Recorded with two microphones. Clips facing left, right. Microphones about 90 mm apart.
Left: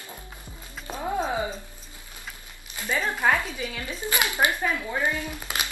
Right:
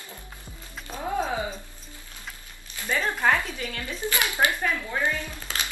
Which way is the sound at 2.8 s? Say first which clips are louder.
Even; 10° left (ahead or behind).